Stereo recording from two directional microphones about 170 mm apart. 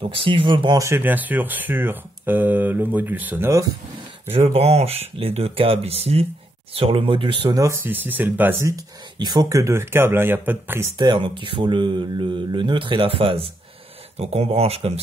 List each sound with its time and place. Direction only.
0.0 s speech: 30° right (ahead or behind)
4.3 s speech: 35° right (ahead or behind); by 10.9 s 10° right (ahead or behind)
11.0 s speech: 25° right (ahead or behind)